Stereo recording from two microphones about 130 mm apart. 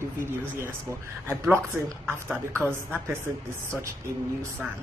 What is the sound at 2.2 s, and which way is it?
Speech, 10° left (ahead or behind).